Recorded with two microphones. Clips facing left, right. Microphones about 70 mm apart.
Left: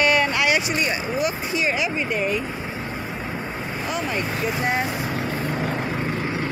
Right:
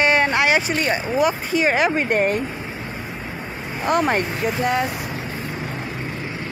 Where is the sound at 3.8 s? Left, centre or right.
Right.